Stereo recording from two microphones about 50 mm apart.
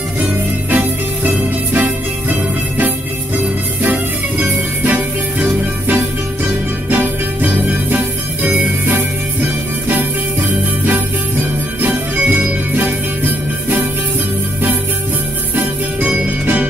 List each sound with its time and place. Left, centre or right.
0.7 s music: right
4.4 s music: right
6.9 s music: right
8.5 s jingle bell: right
11.8 s music: right
15.5 s jingle bell: right